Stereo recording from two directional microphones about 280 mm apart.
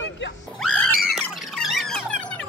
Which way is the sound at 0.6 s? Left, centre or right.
Centre.